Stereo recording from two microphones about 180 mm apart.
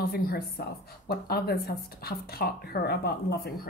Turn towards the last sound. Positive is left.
turn(degrees=60)  # may be behind; listen again after turning